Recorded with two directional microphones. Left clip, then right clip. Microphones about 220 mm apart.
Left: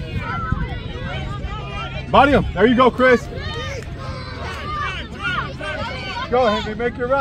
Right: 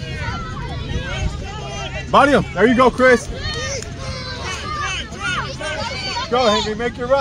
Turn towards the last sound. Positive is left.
turn(degrees=-50)  # may be behind; listen again after turning